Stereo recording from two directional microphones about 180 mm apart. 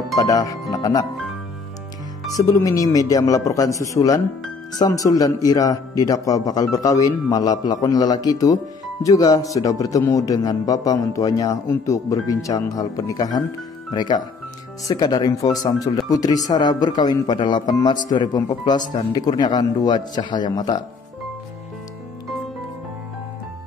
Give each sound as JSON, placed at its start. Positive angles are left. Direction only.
{"t": 0.1, "sound": "speech", "side_deg": 20}
{"t": 2.3, "sound": "speech", "side_deg": 20}